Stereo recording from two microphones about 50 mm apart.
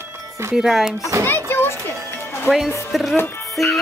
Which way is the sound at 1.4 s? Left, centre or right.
Left.